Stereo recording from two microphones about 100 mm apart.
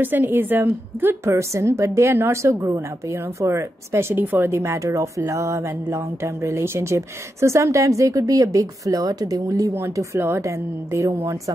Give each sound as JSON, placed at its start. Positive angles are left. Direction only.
{"t": 0.0, "sound": "a woman's voice", "side_deg": -20}